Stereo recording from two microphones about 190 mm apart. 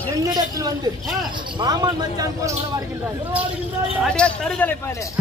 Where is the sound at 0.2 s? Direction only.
20° right (ahead or behind).